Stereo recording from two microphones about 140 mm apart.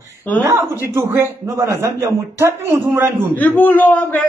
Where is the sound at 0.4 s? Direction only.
15° right (ahead or behind).